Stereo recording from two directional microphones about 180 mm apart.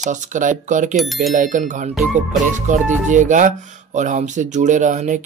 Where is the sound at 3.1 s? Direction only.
45° right (ahead or behind).